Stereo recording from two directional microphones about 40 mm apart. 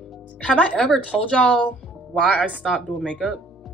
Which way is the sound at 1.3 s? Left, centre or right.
Left.